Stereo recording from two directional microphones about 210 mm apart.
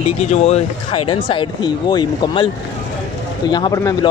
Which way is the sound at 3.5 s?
20° left (ahead or behind).